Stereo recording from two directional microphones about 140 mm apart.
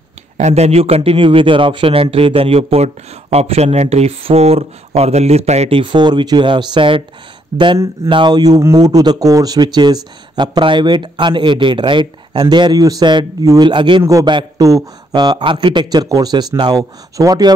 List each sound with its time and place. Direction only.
0.4 s a man's voice: 50° right (ahead or behind); by 17.6 s 30° right (ahead or behind)